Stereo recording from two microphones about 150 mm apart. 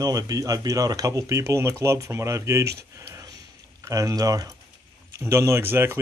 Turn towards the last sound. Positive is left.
turn(degrees=-15)  # may be behind; listen again after turning